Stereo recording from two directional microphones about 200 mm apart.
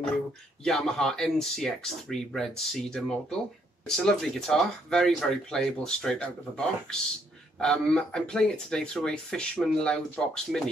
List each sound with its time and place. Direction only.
0.7 s speech: centre (ahead or behind)